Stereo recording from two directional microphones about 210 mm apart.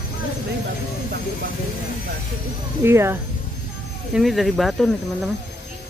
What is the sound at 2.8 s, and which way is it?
Speech, 10° right (ahead or behind).